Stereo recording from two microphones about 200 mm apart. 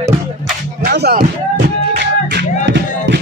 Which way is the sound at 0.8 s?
50° right (ahead or behind).